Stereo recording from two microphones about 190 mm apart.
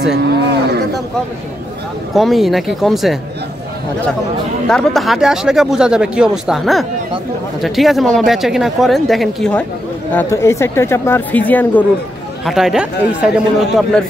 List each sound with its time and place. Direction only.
0.1 s a sound: 60° right (ahead or behind)
2.1 s speech: centre (ahead or behind)
4.6 s speech: centre (ahead or behind)
10.1 s speech: 15° left (ahead or behind)